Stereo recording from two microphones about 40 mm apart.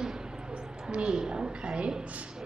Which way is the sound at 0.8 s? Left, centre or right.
Right.